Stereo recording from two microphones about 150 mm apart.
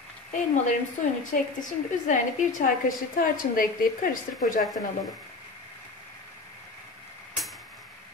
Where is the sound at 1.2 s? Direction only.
60° left (ahead or behind).